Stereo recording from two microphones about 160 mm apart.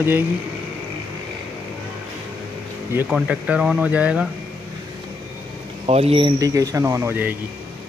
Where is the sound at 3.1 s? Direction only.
5° right (ahead or behind).